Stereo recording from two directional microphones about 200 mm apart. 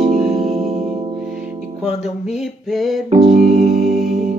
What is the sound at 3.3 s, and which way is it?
Music, 45° right (ahead or behind).